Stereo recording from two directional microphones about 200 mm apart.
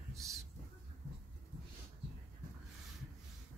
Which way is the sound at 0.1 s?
15° right (ahead or behind).